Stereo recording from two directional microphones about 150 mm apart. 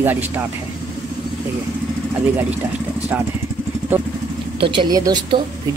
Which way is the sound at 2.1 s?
10° right (ahead or behind).